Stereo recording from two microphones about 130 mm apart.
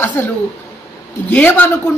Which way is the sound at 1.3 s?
15° left (ahead or behind).